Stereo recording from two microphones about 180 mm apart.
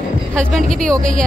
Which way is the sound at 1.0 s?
50° right (ahead or behind).